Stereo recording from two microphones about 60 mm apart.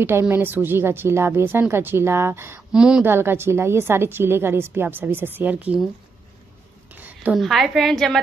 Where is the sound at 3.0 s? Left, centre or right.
Right.